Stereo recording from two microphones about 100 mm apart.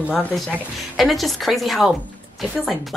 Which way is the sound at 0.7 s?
Centre (ahead or behind).